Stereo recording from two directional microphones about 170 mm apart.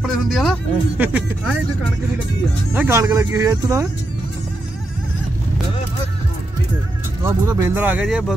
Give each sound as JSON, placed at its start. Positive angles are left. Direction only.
{"t": 0.0, "sound": "speech", "side_deg": 0}
{"t": 2.7, "sound": "speech", "side_deg": -15}
{"t": 7.2, "sound": "speech", "side_deg": -15}